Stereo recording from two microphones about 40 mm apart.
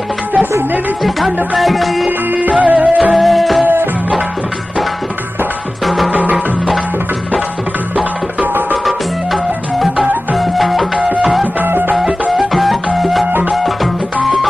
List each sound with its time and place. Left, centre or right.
1.6 s music: centre
2.0 s music: right
3.1 s music: centre
5.9 s music: centre
8.8 s music: centre
11.0 s music: right
11.6 s music: right
12.0 s music: centre
14.2 s music: centre